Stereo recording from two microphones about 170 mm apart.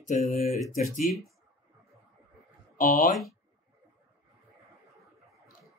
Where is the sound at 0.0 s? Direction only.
40° left (ahead or behind).